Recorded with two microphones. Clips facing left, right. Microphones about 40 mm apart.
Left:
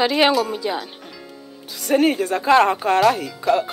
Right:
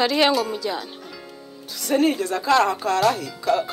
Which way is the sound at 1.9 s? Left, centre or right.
Left.